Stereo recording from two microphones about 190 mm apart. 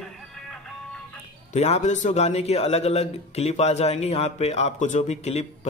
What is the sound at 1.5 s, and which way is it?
A man's voice, 35° left (ahead or behind).